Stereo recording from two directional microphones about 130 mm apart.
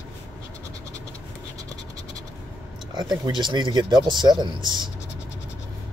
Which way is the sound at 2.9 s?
35° right (ahead or behind).